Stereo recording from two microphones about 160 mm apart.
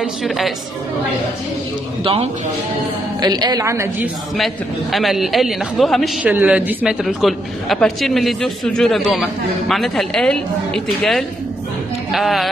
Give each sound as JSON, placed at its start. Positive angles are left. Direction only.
{"t": 0.0, "sound": "speech", "side_deg": 0}
{"t": 3.2, "sound": "a woman's voice", "side_deg": -25}
{"t": 4.9, "sound": "speech", "side_deg": 0}